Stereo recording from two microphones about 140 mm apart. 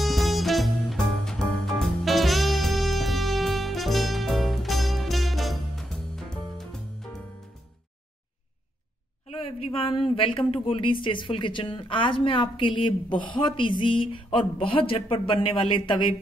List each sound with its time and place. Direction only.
0.0 s music: centre (ahead or behind)
9.3 s speech: 40° left (ahead or behind)